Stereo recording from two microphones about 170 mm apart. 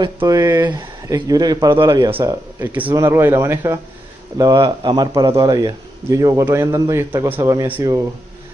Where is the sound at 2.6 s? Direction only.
10° right (ahead or behind).